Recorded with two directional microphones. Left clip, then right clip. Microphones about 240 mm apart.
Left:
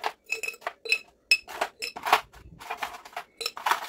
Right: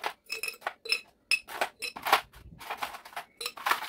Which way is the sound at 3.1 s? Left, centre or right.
Centre.